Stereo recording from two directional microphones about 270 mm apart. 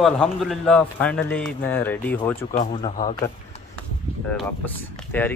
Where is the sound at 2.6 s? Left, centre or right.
Left.